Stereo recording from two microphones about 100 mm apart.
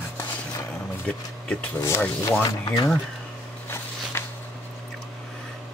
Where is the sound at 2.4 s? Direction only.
40° left (ahead or behind).